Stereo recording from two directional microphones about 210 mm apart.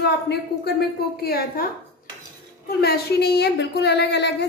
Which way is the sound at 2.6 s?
50° left (ahead or behind).